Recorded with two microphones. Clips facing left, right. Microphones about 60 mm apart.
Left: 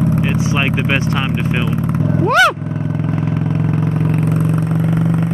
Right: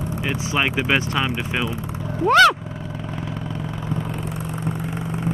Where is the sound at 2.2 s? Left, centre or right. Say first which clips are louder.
Left 1 dB; centre.